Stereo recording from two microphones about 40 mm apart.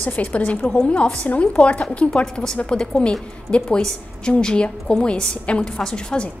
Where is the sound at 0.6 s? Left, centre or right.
Left.